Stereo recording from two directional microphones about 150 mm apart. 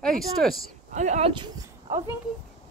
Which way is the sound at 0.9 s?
50° right (ahead or behind).